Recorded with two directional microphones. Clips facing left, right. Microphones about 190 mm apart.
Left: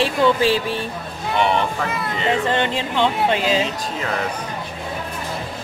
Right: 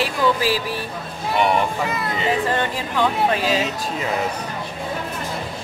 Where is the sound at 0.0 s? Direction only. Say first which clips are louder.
Left 3 dB; 25° left (ahead or behind).